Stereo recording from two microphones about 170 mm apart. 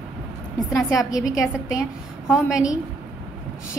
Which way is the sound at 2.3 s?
5° right (ahead or behind).